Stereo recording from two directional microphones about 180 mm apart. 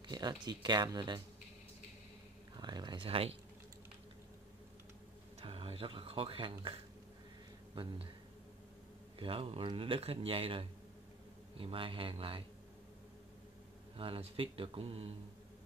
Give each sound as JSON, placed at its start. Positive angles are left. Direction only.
{"t": 0.0, "sound": "speech", "side_deg": -25}
{"t": 2.5, "sound": "speech", "side_deg": -25}
{"t": 5.4, "sound": "speech", "side_deg": -30}
{"t": 7.7, "sound": "speech", "side_deg": -30}
{"t": 9.2, "sound": "a man's voice", "side_deg": -30}
{"t": 13.9, "sound": "speech", "side_deg": -30}